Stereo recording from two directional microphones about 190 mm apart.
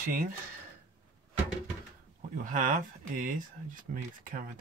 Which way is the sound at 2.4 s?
45° right (ahead or behind).